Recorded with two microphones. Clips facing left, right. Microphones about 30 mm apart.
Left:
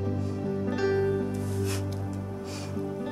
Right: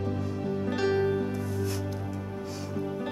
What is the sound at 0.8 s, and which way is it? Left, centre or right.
Music, centre.